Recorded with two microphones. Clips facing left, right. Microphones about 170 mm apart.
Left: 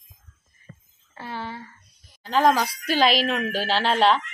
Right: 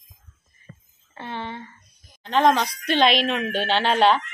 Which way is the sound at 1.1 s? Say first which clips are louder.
Right 1 dB; 5° left (ahead or behind).